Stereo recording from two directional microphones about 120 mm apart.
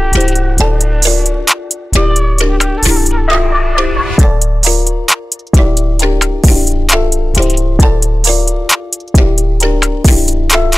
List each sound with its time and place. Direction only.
0.0 s music: centre (ahead or behind)